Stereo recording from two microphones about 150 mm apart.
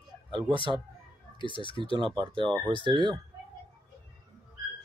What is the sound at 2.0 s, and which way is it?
Speech, 30° right (ahead or behind).